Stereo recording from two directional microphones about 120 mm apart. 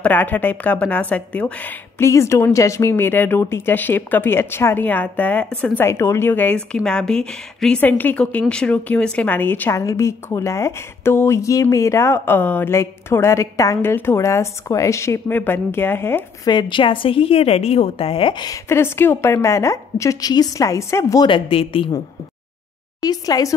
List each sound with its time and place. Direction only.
0.0 s a woman's voice: 15° left (ahead or behind)
16.4 s a woman's voice: 40° left (ahead or behind)
18.7 s a woman's voice: 20° left (ahead or behind)
21.3 s a woman's voice: 50° left (ahead or behind)
23.0 s a woman's voice: 30° left (ahead or behind)